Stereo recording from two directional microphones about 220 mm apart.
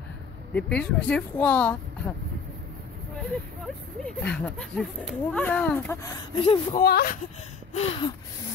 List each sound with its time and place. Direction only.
0.6 s speech: 5° left (ahead or behind)
3.2 s speech: 5° left (ahead or behind)
6.3 s speech: 25° left (ahead or behind)
6.8 s speech: 45° left (ahead or behind)
7.7 s speech: 25° left (ahead or behind)